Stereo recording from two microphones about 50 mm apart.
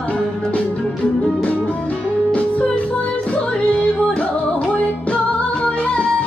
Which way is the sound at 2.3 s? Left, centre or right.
Left.